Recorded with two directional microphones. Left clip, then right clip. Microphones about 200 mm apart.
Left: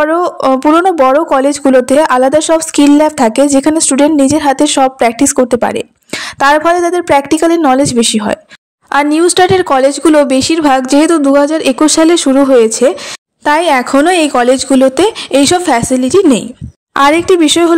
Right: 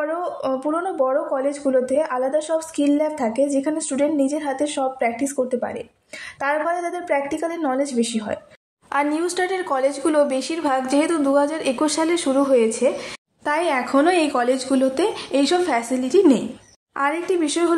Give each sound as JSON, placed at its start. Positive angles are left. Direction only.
{"t": 0.0, "sound": "a woman's voice", "side_deg": 45}
{"t": 16.9, "sound": "speech", "side_deg": 50}